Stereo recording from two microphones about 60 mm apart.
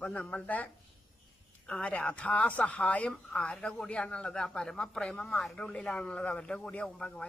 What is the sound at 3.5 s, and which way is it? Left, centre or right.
A man's voice, centre.